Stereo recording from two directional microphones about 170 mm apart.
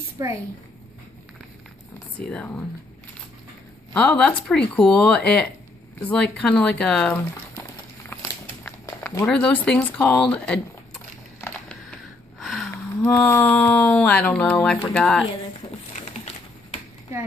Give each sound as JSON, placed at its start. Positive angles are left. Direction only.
{"t": 0.2, "sound": "a woman's voice", "side_deg": -20}
{"t": 2.1, "sound": "speech", "side_deg": 10}
{"t": 3.9, "sound": "speech", "side_deg": 5}
{"t": 8.6, "sound": "a sound", "side_deg": 15}
{"t": 9.2, "sound": "speech", "side_deg": 5}
{"t": 12.4, "sound": "a sound", "side_deg": 0}
{"t": 12.7, "sound": "speech", "side_deg": 5}
{"t": 16.1, "sound": "typewriter", "side_deg": 40}